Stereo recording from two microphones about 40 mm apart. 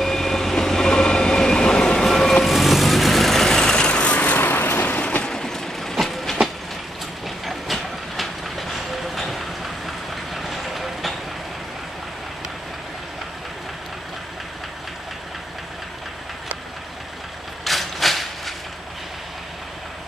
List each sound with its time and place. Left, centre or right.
0.0 s train: centre
2.0 s vehicle: centre
3.4 s vehicle: centre
4.4 s vehicle: left
5.2 s train: centre
17.6 s a sound: centre